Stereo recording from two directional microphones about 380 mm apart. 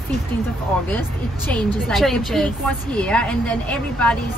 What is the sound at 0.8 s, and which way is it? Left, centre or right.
Speech, centre.